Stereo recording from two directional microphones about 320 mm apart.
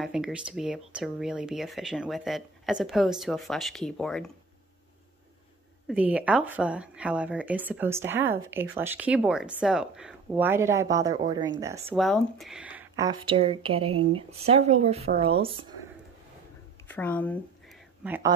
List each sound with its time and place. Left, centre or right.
0.0 s a woman's voice: centre
5.9 s a woman's voice: centre
16.8 s speech: centre
18.0 s a woman's voice: centre